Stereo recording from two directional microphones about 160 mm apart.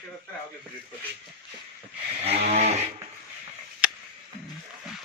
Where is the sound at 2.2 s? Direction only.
40° right (ahead or behind).